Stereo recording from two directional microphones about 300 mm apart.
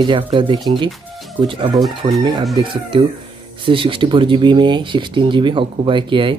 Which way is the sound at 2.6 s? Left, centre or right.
Centre.